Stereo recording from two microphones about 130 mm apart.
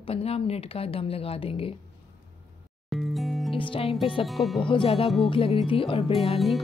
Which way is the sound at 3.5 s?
45° left (ahead or behind).